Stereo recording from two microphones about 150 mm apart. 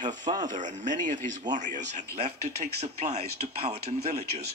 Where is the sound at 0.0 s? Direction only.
55° right (ahead or behind).